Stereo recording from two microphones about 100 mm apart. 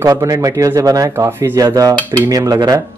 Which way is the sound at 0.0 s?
35° right (ahead or behind).